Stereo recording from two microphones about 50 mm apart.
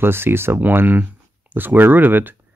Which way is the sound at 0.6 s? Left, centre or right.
Right.